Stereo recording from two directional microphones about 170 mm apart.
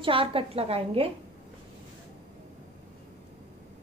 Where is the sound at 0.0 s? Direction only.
30° right (ahead or behind).